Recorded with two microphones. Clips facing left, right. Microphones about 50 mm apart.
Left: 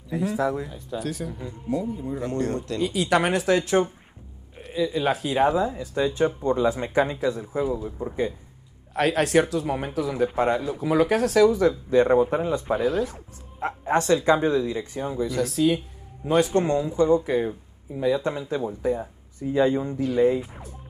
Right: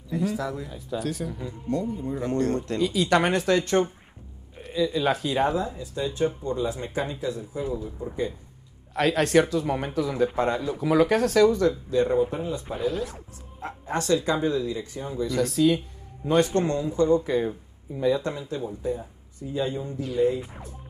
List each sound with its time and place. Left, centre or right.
0.1 s speech: centre
0.7 s speech: centre
5.8 s speech: left
7.7 s speech: centre
11.9 s speech: left
12.7 s speech: centre
13.6 s speech: left
15.3 s speech: centre
18.5 s speech: left
18.9 s speech: left
20.0 s speech: centre